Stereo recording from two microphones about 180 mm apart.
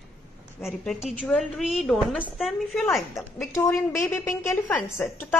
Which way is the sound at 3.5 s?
15° left (ahead or behind).